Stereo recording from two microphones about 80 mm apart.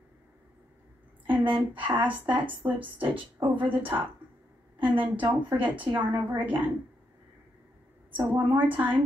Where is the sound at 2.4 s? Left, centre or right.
Right.